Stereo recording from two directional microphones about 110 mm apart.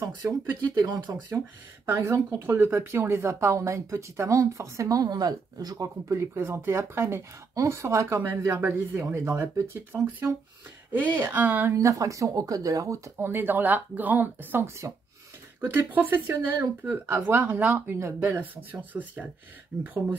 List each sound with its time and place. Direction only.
0.0 s speech: 35° right (ahead or behind)
1.9 s a woman's voice: 20° right (ahead or behind)
11.7 s a woman's voice: 30° right (ahead or behind)
15.9 s speech: 15° right (ahead or behind)